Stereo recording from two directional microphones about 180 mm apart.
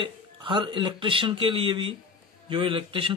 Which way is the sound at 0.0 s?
25° right (ahead or behind).